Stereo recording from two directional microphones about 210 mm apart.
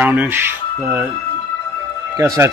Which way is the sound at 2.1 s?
15° right (ahead or behind).